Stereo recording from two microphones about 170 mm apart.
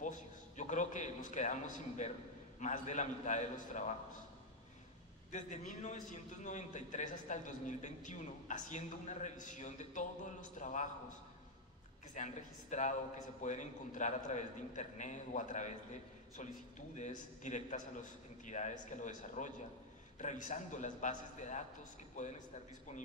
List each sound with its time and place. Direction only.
0.6 s a man's voice: 45° left (ahead or behind)
5.3 s a man's voice: 45° left (ahead or behind)
12.1 s a man's voice: 45° left (ahead or behind)
16.9 s a man's voice: 45° left (ahead or behind)